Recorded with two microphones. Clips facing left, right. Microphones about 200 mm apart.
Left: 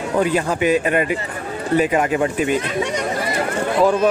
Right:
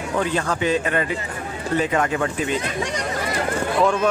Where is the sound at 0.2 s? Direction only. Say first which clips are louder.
Left 4 dB; 15° left (ahead or behind).